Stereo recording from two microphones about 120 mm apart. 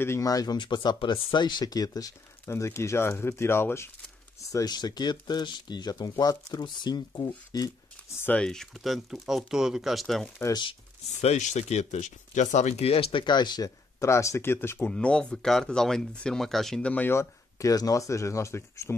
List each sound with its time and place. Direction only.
0.0 s speech: 25° left (ahead or behind)
4.5 s speech: 30° left (ahead or behind)
8.2 s speech: 10° left (ahead or behind)
11.1 s speech: 75° left (ahead or behind); by 13.7 s 35° left (ahead or behind)
13.9 s speech: 25° left (ahead or behind)
14.9 s speech: 10° left (ahead or behind)